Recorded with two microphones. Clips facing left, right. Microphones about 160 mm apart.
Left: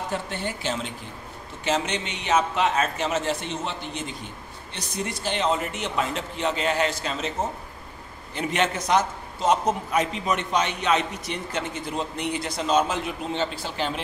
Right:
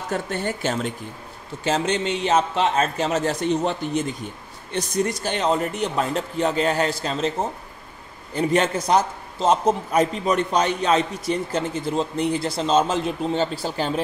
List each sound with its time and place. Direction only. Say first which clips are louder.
0.1 s speech: right 4 dB; 45° right (ahead or behind)
1.6 s a man's voice: right 4 dB; 35° right (ahead or behind)
8.4 s a man's voice: right 5 dB; 35° right (ahead or behind)